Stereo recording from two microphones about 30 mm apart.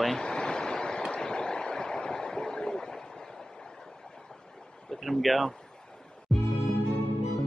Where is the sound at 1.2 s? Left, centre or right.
Left.